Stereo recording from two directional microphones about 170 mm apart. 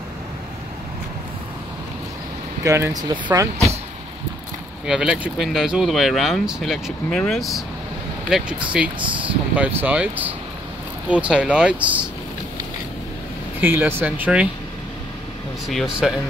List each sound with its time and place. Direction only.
2.6 s speech: 20° right (ahead or behind)
4.8 s speech: 5° right (ahead or behind)
9.0 s speech: 30° right (ahead or behind)
9.6 s speech: 10° right (ahead or behind)
13.6 s speech: 10° right (ahead or behind)
15.7 s speech: centre (ahead or behind)